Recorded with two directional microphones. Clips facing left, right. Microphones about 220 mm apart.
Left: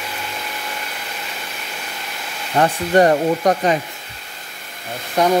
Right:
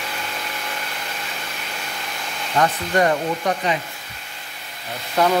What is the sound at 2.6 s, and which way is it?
Speech, 35° left (ahead or behind).